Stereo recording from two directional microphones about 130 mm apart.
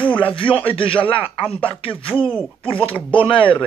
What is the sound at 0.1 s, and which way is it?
A man's voice, 40° left (ahead or behind).